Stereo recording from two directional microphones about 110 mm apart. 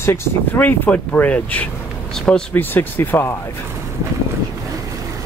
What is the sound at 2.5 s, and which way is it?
Speech, 20° left (ahead or behind).